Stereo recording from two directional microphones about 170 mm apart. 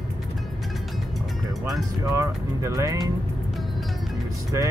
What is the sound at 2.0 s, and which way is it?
Speech, 20° right (ahead or behind).